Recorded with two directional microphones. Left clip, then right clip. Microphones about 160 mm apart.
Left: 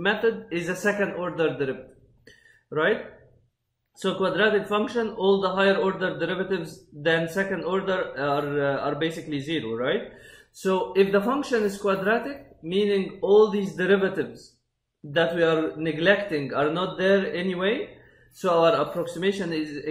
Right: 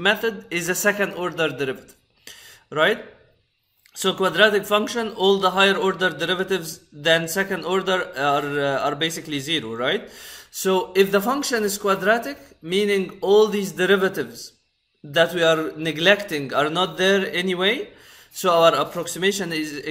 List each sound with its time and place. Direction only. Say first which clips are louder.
0.0 s speech: right 3 dB; 15° right (ahead or behind)
2.2 s a sound: right 6 dB; 15° right (ahead or behind)
4.0 s speech: right 5 dB; 15° right (ahead or behind)